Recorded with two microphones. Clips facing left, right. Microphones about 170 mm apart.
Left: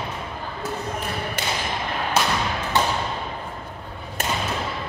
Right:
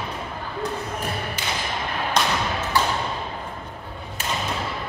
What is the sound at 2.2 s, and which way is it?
Thump, 5° left (ahead or behind).